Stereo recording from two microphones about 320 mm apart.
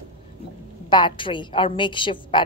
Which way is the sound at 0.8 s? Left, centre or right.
Centre.